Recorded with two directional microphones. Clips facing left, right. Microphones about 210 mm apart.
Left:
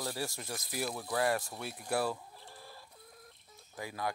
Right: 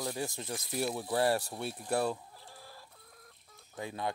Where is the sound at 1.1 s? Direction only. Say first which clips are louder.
Right 2 dB; 30° right (ahead or behind).